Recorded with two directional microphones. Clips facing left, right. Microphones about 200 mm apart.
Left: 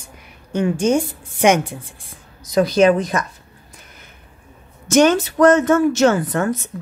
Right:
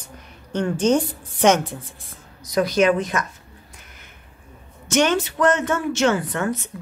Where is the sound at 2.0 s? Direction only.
30° left (ahead or behind).